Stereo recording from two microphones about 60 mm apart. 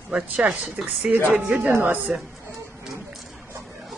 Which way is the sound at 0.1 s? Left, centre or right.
Centre.